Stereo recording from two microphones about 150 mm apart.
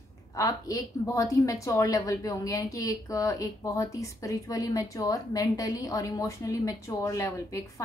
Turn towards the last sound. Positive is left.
turn(degrees=20)  # may be behind; listen again after turning